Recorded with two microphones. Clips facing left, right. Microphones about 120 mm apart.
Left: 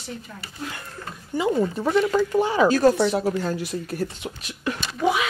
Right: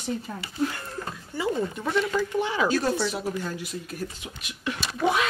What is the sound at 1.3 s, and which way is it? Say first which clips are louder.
Speech: left 6 dB; 15° left (ahead or behind).